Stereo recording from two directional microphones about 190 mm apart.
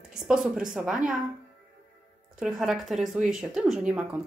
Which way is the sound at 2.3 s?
5° right (ahead or behind).